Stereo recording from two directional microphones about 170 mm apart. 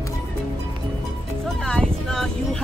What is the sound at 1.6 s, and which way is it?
Vehicle, 5° left (ahead or behind).